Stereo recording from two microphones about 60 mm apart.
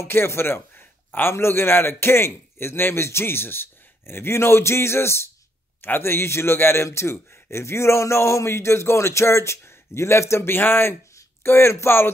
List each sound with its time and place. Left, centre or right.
0.0 s a man's voice: left